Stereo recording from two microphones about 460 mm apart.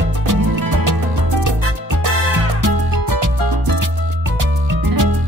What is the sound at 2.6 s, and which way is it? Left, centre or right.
Music, right.